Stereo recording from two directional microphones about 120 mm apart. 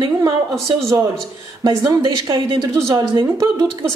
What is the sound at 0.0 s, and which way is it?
Speech, 30° right (ahead or behind).